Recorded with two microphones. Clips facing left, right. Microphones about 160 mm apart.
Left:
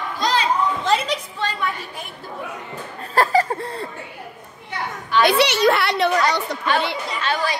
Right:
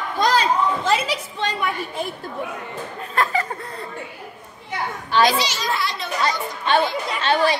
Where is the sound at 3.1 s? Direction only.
35° left (ahead or behind).